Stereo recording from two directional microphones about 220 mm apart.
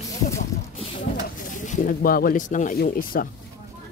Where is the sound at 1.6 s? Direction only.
35° left (ahead or behind).